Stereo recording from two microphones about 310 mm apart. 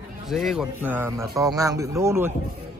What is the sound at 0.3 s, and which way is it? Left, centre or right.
A man's voice, centre.